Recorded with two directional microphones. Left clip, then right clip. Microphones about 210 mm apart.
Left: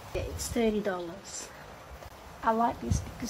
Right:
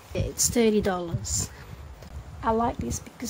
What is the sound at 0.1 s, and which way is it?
A woman's voice, 65° right (ahead or behind).